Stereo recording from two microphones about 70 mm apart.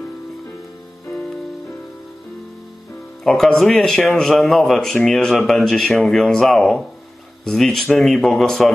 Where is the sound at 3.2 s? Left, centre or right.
Centre.